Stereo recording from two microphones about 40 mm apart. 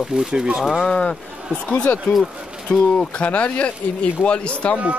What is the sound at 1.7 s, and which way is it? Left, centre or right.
Speech, left.